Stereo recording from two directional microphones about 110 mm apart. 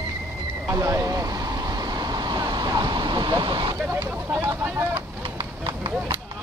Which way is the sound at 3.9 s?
20° right (ahead or behind).